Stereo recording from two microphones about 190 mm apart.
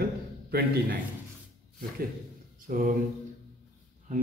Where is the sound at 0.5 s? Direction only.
55° right (ahead or behind).